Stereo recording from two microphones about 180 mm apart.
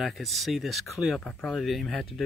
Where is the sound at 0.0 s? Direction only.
Centre (ahead or behind).